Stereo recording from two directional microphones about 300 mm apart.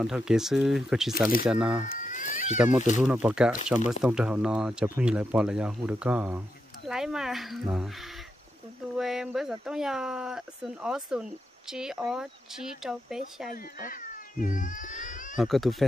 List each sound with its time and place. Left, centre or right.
0.0 s speech: centre
1.9 s cat: left
3.0 s speech: centre
13.5 s cat: left
15.3 s speech: centre